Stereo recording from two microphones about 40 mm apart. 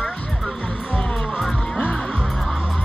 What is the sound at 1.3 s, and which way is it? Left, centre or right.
Music, centre.